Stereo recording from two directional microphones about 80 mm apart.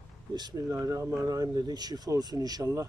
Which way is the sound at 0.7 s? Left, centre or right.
Right.